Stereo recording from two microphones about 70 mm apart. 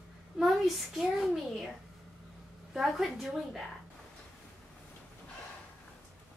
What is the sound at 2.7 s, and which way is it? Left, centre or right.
Speech, centre.